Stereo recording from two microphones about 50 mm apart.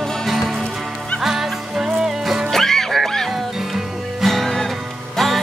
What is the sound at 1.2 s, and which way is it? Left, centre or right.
Music, centre.